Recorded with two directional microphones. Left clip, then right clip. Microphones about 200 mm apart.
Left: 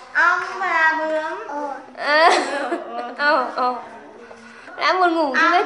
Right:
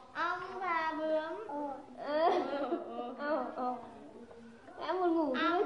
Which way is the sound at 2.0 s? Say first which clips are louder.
Left 16 dB; 30° left (ahead or behind).